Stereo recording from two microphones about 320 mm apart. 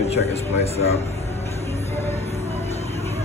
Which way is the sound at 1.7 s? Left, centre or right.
Centre.